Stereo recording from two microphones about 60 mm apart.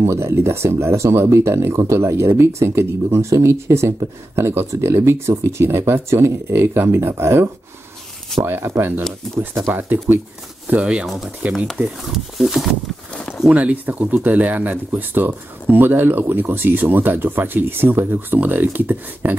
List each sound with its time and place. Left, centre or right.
0.0 s speech: right
10.8 s speech: centre
11.8 s speech: centre
13.5 s speech: right